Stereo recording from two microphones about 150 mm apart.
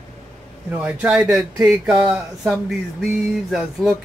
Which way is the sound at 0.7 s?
5° right (ahead or behind).